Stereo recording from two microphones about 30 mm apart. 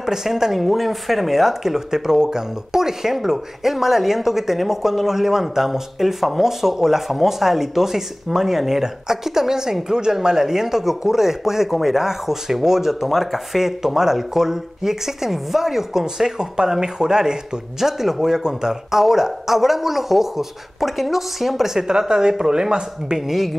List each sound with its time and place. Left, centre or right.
0.0 s speech: centre
17.7 s speech: centre
21.7 s speech: right
23.1 s speech: centre